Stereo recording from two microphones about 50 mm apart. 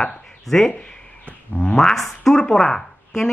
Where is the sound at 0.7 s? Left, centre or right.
Left.